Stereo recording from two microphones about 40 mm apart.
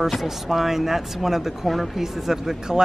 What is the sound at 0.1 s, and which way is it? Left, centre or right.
Speech, centre.